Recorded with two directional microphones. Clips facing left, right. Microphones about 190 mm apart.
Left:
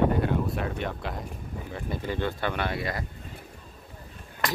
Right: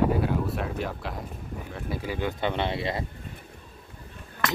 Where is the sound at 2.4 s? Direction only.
20° right (ahead or behind).